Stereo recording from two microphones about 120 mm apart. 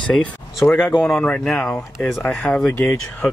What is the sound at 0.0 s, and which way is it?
Speech, 5° left (ahead or behind).